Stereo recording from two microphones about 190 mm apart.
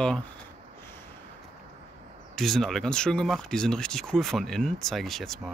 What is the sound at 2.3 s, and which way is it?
Speech, centre (ahead or behind).